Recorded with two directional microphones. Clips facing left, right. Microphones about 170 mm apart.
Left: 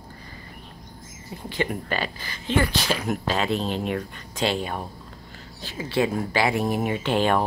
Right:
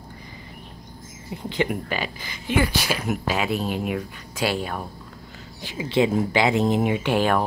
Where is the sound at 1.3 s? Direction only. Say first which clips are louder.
Right 3 dB; 20° right (ahead or behind).